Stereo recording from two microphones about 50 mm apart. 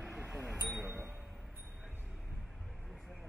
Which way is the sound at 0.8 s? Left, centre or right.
Right.